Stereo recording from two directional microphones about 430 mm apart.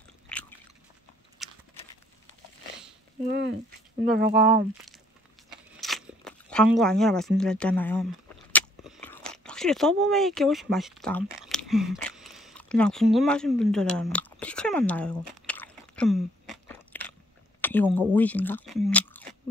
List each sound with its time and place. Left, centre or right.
0.3 s biting: centre
1.4 s a sound: centre
3.3 s speech: right
5.8 s crunch: centre
17.6 s speech: centre